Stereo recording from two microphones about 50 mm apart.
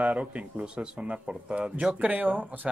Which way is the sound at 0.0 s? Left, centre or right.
Right.